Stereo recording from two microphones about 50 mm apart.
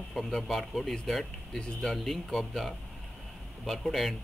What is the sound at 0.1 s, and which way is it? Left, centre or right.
Speech, centre.